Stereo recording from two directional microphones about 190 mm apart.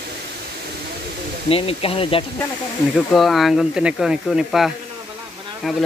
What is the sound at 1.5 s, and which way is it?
Speech, 30° left (ahead or behind).